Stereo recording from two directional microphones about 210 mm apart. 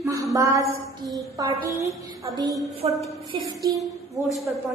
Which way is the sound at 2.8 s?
30° right (ahead or behind).